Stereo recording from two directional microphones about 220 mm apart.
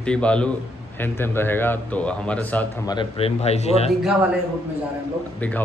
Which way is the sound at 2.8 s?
25° left (ahead or behind).